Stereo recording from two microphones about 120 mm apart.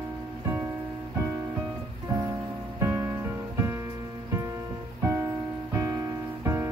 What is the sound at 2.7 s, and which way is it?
Music, 25° right (ahead or behind).